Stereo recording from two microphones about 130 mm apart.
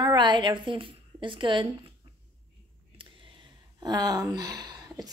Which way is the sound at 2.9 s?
40° right (ahead or behind).